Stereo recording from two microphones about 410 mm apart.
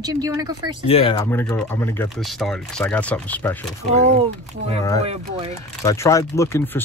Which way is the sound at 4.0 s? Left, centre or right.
Centre.